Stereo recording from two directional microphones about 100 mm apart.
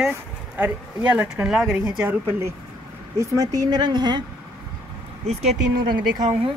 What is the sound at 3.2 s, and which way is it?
Speech, 35° right (ahead or behind).